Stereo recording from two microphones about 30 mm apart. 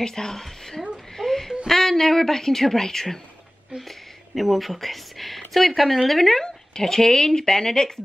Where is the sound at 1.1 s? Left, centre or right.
Centre.